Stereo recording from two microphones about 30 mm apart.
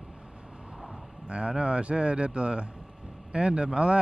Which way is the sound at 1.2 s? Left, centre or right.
Right.